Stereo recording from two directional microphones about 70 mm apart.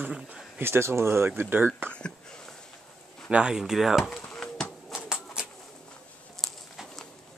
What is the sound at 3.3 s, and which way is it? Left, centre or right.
Speech, centre.